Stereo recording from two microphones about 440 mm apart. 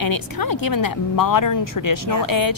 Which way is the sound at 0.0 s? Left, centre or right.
Left.